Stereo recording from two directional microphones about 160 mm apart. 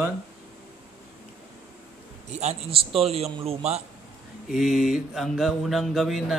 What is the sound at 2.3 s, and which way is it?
A man's voice, 45° right (ahead or behind).